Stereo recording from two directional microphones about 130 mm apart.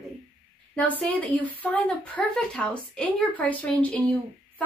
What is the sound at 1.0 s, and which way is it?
Speech, 10° left (ahead or behind).